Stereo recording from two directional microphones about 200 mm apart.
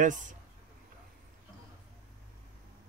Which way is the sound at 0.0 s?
40° right (ahead or behind).